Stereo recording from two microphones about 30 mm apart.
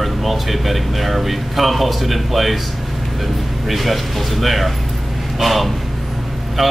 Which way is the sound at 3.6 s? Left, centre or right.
Centre.